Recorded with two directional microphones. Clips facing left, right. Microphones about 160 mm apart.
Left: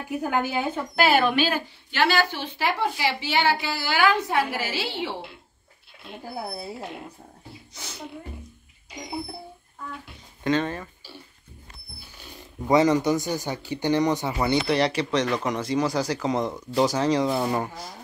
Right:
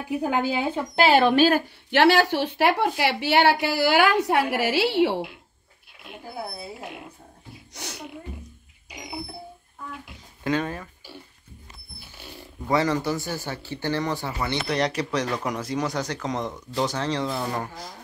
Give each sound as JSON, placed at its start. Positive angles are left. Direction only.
{"t": 0.1, "sound": "speech", "side_deg": -15}
{"t": 1.3, "sound": "a woman's voice", "side_deg": -40}
{"t": 1.9, "sound": "a woman's voice", "side_deg": -70}
{"t": 7.7, "sound": "a woman's voice", "side_deg": -70}
{"t": 10.4, "sound": "speech", "side_deg": -5}
{"t": 12.6, "sound": "speech", "side_deg": 20}
{"t": 14.7, "sound": "speech", "side_deg": 0}